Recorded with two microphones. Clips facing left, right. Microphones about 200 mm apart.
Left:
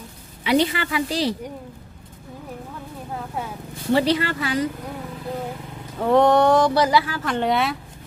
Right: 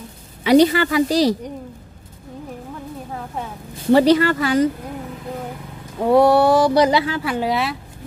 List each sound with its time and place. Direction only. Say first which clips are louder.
0.4 s a woman's voice: right 7 dB; 40° right (ahead or behind)
3.9 s speech: right 6 dB; 45° right (ahead or behind)
5.9 s speech: right 2 dB; 10° right (ahead or behind)
7.2 s speech: even; 5° right (ahead or behind)